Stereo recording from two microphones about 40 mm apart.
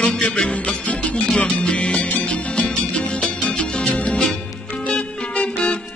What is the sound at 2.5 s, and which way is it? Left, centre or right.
Music, left.